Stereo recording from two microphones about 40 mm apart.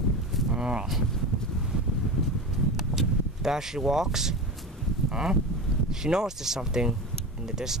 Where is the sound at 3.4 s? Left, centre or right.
Centre.